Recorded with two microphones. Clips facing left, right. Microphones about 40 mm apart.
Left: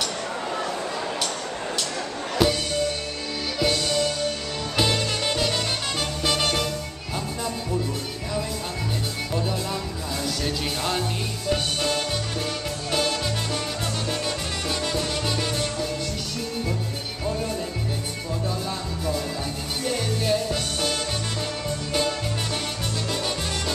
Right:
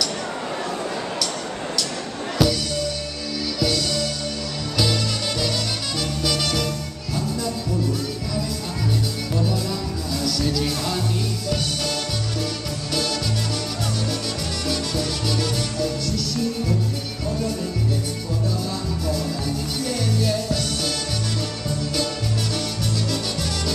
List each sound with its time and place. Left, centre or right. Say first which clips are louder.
2.3 s music: right 1 dB; left
6.2 s music: left 1 dB; left
10.2 s music: right 5 dB; left
14.7 s music: right 1 dB; left
19.8 s music: right 1 dB; left